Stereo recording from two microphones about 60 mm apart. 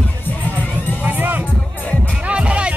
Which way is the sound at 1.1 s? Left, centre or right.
Right.